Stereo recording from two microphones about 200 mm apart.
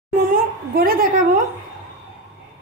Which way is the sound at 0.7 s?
45° right (ahead or behind).